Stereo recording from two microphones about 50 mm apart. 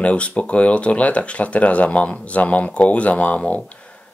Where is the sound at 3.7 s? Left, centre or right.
Left.